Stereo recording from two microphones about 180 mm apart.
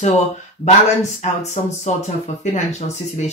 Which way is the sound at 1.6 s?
40° left (ahead or behind).